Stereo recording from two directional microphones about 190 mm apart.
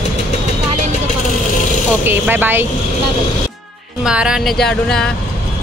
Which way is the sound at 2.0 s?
10° right (ahead or behind).